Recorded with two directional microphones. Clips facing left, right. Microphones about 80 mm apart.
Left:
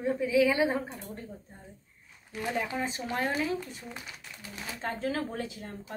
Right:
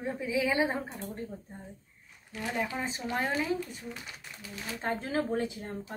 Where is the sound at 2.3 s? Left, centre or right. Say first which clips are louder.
Left 1 dB; left.